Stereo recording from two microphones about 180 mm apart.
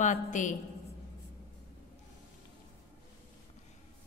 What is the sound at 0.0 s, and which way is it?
Speech, 45° left (ahead or behind).